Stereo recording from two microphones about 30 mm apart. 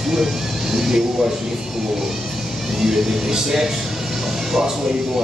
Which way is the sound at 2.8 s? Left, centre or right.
Centre.